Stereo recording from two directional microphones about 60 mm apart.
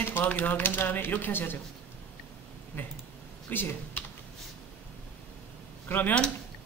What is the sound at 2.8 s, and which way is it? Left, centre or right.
Speech, left.